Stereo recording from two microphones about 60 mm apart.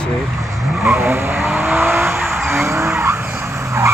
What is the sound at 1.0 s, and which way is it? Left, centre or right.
Vehicle, right.